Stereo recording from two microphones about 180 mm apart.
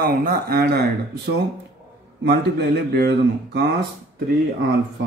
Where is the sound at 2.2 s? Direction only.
65° right (ahead or behind).